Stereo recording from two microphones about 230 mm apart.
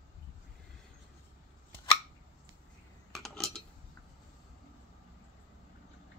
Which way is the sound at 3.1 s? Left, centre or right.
Centre.